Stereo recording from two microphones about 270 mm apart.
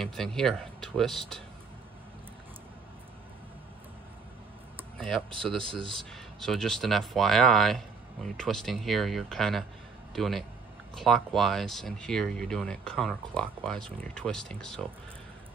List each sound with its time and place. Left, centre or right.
0.0 s speech: centre
4.7 s speech: centre